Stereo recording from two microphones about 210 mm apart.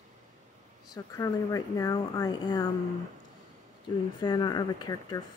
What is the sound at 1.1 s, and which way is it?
Speech, 15° left (ahead or behind).